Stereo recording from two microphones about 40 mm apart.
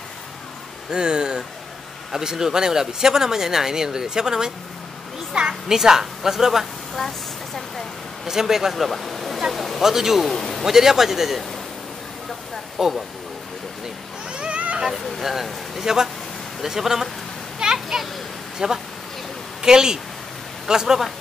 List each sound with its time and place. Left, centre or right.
0.9 s a woman's voice: centre
7.0 s a sound: centre
8.3 s speech: centre
9.8 s speech: centre
10.2 s speech: centre
10.6 s speech: centre
12.7 s speech: centre
14.3 s a sound: right
14.9 s speech: centre
17.7 s children playing: centre
18.6 s speech: centre